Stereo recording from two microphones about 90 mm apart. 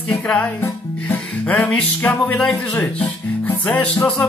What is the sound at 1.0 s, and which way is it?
Music, 20° left (ahead or behind).